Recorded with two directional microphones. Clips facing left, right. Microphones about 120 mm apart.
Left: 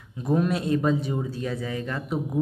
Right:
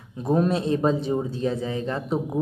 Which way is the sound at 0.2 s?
30° right (ahead or behind).